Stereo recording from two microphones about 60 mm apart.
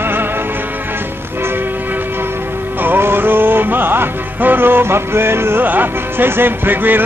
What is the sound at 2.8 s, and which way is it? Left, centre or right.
Music, right.